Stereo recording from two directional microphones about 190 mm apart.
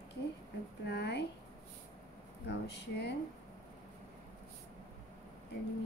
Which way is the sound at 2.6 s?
65° left (ahead or behind).